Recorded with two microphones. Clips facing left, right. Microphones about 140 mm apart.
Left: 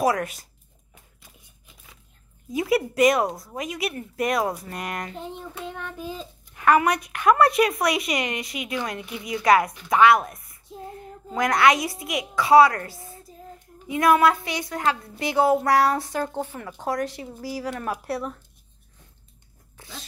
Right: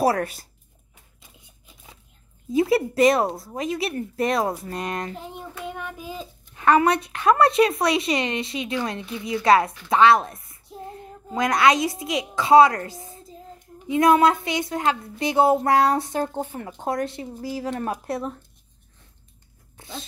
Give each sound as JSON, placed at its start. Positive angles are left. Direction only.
{"t": 0.0, "sound": "speech", "side_deg": -30}
{"t": 2.5, "sound": "a woman's voice", "side_deg": -30}
{"t": 5.7, "sound": "child singing", "side_deg": -10}
{"t": 6.5, "sound": "a woman's voice", "side_deg": -25}
{"t": 19.8, "sound": "speech", "side_deg": -25}